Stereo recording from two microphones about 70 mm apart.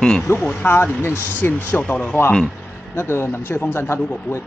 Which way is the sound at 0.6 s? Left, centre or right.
Left.